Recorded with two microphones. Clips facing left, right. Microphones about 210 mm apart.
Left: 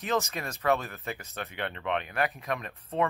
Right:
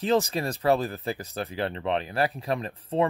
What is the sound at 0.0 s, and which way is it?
Speech, 30° right (ahead or behind).